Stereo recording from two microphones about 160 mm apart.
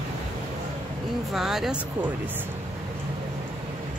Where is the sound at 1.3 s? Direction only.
5° right (ahead or behind).